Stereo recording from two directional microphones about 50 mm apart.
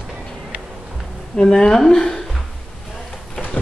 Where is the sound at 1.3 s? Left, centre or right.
Centre.